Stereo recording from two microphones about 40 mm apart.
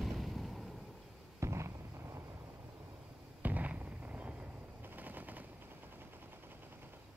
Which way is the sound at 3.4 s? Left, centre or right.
Right.